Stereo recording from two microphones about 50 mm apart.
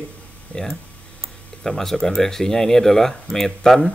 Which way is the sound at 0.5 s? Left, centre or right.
Left.